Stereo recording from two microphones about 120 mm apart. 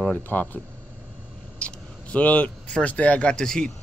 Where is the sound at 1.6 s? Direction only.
10° left (ahead or behind).